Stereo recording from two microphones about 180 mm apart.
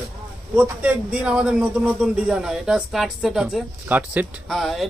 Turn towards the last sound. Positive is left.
turn(degrees=0)  # may be behind; listen again after turning